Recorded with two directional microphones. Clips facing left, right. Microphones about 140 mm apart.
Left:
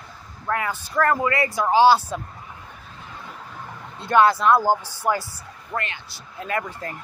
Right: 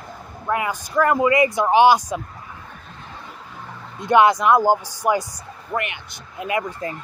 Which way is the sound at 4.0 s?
20° right (ahead or behind).